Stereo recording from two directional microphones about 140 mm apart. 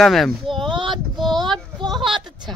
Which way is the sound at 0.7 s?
35° right (ahead or behind).